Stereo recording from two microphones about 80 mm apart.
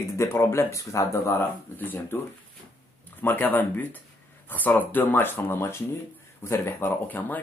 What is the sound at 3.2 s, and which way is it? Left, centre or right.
Speech, left.